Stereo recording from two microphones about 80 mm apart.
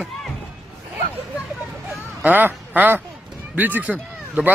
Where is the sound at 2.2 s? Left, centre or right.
Right.